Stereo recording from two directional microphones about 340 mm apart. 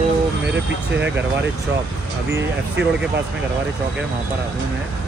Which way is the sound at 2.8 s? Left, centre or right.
Right.